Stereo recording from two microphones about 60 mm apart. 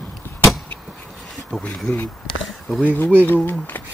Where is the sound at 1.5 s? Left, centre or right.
Centre.